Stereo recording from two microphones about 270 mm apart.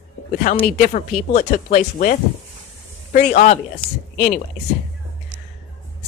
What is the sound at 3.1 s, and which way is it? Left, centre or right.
Speech, left.